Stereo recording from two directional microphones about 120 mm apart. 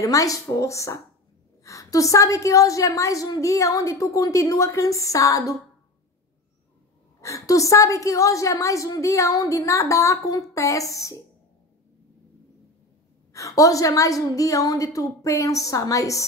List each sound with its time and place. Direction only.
0.0 s a woman's voice: 30° left (ahead or behind)
7.2 s a woman's voice: 25° left (ahead or behind)
13.3 s a woman's voice: 25° left (ahead or behind)